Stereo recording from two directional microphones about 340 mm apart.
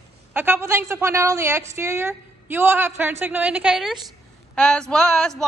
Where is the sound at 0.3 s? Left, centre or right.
Centre.